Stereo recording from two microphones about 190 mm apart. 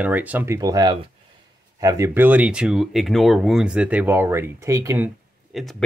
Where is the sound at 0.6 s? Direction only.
20° right (ahead or behind).